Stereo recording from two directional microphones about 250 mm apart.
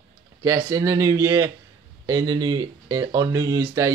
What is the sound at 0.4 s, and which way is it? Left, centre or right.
Speech, centre.